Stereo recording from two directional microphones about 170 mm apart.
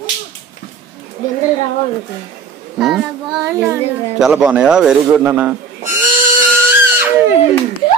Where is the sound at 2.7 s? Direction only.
5° right (ahead or behind).